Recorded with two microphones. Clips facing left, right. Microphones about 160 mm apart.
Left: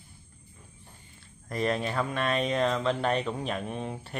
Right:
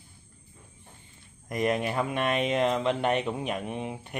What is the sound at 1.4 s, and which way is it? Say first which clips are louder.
Speech: right 2 dB; 15° right (ahead or behind).